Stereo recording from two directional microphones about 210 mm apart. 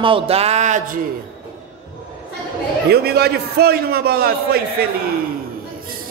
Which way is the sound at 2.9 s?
50° right (ahead or behind).